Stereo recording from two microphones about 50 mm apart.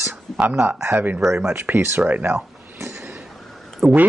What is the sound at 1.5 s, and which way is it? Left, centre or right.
Speech, right.